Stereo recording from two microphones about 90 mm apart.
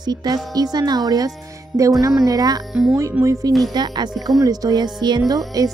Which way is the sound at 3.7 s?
50° right (ahead or behind).